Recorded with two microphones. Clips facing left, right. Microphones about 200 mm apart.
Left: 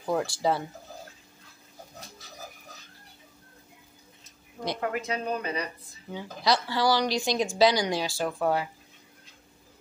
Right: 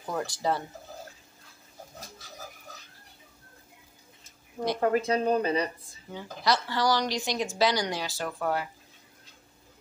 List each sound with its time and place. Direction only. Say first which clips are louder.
0.1 s a woman's voice: left 3 dB; 10° left (ahead or behind)
4.7 s speech: right 7 dB; 35° right (ahead or behind)
6.1 s a woman's voice: left 1 dB; 10° left (ahead or behind)